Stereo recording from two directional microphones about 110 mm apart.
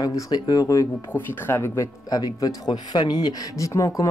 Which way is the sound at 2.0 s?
35° left (ahead or behind).